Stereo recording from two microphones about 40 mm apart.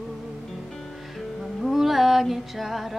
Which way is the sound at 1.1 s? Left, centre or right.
Centre.